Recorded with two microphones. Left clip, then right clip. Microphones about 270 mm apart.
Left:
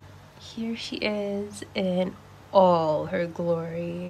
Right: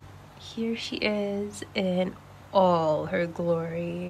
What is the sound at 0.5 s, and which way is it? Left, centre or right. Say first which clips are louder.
Speech: right 2 dB; centre.